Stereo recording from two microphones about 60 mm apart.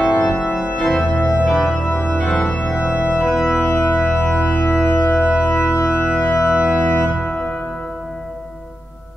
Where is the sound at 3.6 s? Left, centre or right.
Centre.